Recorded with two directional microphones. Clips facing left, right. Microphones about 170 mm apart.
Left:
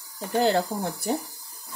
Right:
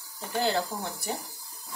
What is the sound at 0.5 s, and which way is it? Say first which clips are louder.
Speech: left 5 dB; 45° left (ahead or behind).